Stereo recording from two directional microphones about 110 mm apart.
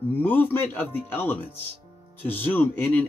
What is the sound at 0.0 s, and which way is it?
Speech, 20° left (ahead or behind).